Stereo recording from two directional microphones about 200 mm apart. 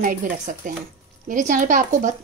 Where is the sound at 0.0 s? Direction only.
40° right (ahead or behind).